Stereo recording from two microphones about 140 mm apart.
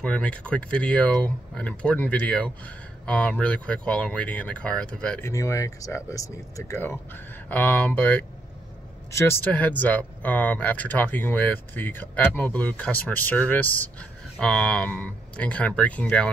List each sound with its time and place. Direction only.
0.0 s speech: 10° left (ahead or behind)
5.2 s speech: 20° left (ahead or behind)